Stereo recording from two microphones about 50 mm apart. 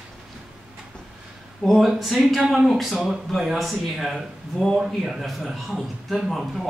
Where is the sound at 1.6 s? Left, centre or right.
Centre.